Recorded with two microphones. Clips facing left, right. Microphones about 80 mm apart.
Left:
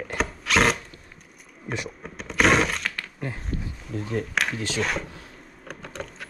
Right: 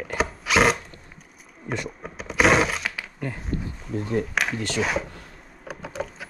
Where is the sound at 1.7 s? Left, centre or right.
Centre.